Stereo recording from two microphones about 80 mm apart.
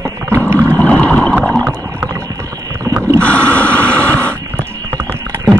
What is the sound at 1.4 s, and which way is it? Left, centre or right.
Rowboat, centre.